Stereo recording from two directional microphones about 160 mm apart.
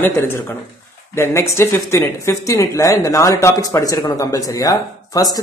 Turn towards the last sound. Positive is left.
turn(degrees=20)  # may be behind; listen again after turning